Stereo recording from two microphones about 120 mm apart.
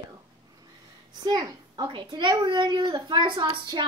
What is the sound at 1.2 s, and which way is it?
Speech, 35° right (ahead or behind).